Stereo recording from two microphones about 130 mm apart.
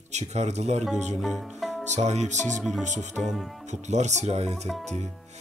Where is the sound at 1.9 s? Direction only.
60° right (ahead or behind).